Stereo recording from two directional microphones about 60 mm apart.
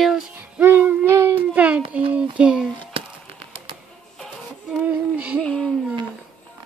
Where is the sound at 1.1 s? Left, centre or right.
Right.